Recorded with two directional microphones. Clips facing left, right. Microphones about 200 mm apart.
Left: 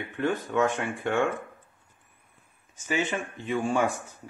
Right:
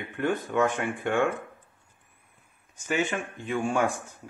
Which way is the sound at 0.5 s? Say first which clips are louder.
Even; 10° right (ahead or behind).